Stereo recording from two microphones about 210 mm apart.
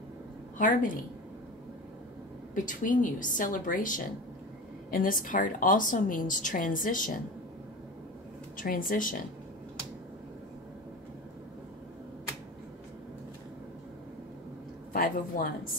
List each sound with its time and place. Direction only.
0.6 s a woman's voice: 40° left (ahead or behind)
2.5 s a woman's voice: 40° left (ahead or behind)
8.5 s a woman's voice: 45° left (ahead or behind)
14.9 s a woman's voice: 45° left (ahead or behind)